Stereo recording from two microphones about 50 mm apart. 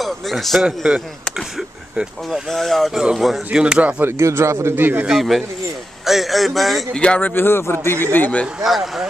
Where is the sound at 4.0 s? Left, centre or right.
Right.